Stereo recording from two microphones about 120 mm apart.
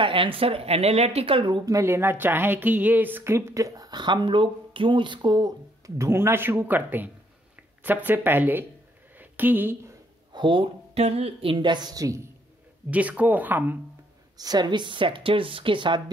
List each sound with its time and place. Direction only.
0.0 s a woman's voice: 45° right (ahead or behind)
1.7 s speech: 20° right (ahead or behind)
9.1 s a sound: 15° right (ahead or behind)
10.3 s speech: 45° right (ahead or behind)
11.5 s a woman's voice: 40° right (ahead or behind)
12.9 s speech: 10° right (ahead or behind)
14.3 s a woman's voice: 35° right (ahead or behind)